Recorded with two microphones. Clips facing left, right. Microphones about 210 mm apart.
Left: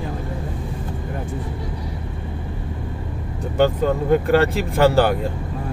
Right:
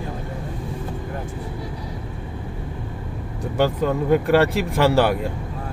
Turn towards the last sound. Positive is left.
turn(degrees=0)  # may be behind; listen again after turning